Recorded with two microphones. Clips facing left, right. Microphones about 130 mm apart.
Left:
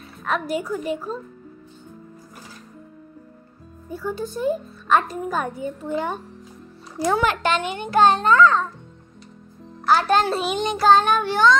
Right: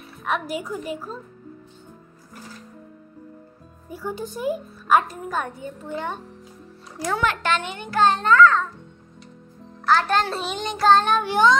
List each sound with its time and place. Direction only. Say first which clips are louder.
0.2 s a woman's voice: left 2 dB; 5° right (ahead or behind)
3.9 s a child's voice: left 3 dB; 15° right (ahead or behind); by 8.6 s 20° left (ahead or behind)
9.8 s a child's voice: left 2 dB; 10° left (ahead or behind)
11.2 s a woman's voice: even; 15° right (ahead or behind)